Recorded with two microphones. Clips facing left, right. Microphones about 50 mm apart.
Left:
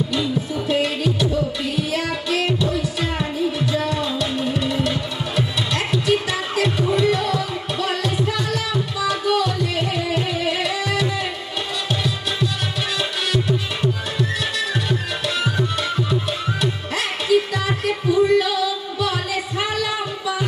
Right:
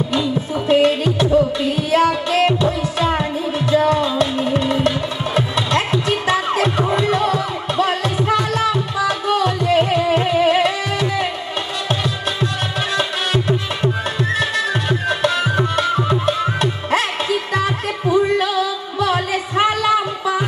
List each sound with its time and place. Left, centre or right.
0.1 s music: right